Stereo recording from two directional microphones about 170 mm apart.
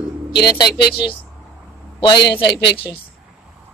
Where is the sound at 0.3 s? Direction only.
25° left (ahead or behind).